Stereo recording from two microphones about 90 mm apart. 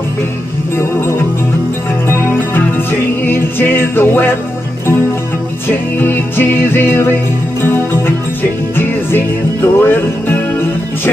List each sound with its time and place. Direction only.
2.0 s music: 20° left (ahead or behind)
5.7 s music: 20° left (ahead or behind)
8.4 s music: 25° left (ahead or behind)